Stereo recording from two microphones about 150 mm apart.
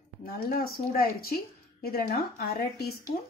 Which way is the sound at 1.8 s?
90° left.